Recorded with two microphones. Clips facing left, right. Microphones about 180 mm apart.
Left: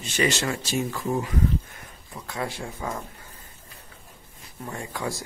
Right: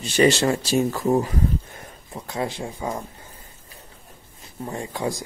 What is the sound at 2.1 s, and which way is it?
Speech, 25° right (ahead or behind).